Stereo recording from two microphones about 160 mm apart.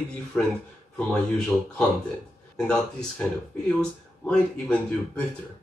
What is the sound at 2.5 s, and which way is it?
Speech, 5° left (ahead or behind).